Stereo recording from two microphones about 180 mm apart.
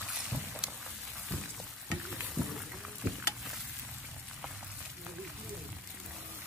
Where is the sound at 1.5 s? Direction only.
5° right (ahead or behind).